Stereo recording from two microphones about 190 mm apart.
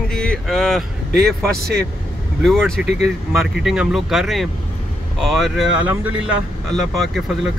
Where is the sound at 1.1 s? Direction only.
55° right (ahead or behind).